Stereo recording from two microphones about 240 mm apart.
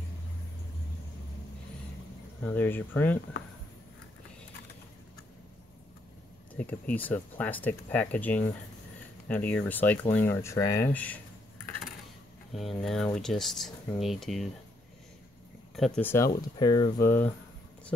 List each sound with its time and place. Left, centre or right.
2.4 s speech: centre
6.5 s speech: centre
12.5 s speech: centre
15.7 s speech: centre